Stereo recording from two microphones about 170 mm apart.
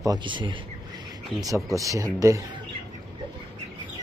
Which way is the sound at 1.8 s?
20° right (ahead or behind).